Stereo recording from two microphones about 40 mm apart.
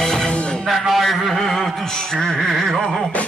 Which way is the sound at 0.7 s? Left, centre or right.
Centre.